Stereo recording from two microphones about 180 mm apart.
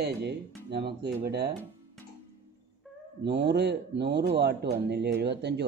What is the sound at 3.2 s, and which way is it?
Speech, 70° right (ahead or behind).